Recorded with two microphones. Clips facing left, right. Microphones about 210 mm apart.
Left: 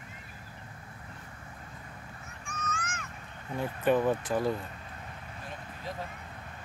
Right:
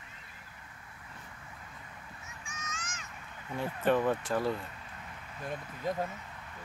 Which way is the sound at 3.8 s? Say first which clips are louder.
Left 2 dB; 10° left (ahead or behind).